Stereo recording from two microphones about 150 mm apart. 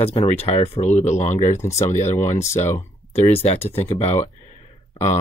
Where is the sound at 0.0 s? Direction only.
40° left (ahead or behind).